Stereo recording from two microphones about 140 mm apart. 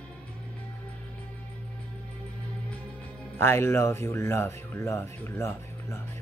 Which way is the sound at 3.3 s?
15° left (ahead or behind).